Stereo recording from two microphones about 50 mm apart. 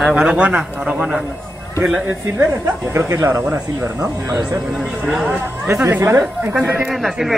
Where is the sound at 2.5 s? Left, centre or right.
Right.